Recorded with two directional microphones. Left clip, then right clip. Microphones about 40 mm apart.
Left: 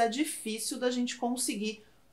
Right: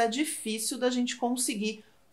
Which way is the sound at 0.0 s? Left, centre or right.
Right.